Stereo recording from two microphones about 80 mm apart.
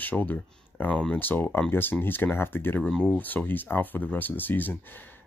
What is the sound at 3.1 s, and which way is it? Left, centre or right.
Speech, left.